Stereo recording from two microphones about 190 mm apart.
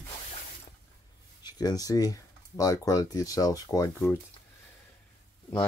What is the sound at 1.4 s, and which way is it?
Speech, 20° left (ahead or behind).